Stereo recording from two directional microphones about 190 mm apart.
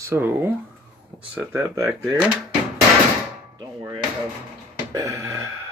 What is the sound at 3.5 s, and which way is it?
Speech, 25° right (ahead or behind).